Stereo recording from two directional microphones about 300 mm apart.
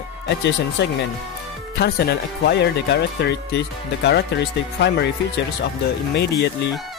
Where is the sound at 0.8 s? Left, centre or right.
Left.